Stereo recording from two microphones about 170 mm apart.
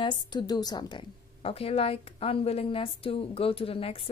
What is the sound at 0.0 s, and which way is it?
A woman's voice, 25° left (ahead or behind).